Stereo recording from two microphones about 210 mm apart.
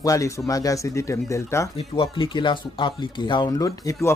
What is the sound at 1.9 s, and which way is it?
Speech, 25° left (ahead or behind).